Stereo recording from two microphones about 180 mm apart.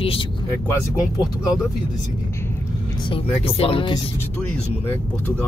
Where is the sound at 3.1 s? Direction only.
30° left (ahead or behind).